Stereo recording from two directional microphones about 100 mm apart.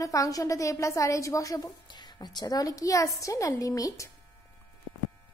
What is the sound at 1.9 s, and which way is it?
A woman's voice, 50° left (ahead or behind).